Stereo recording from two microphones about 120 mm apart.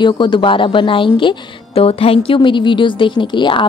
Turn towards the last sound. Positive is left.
turn(degrees=40)  # may be behind; listen again after turning